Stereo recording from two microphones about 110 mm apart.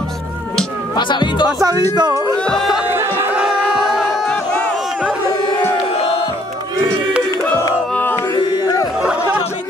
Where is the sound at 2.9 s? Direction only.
20° right (ahead or behind).